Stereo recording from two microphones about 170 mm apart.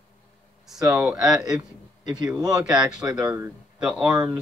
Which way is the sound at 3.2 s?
15° right (ahead or behind).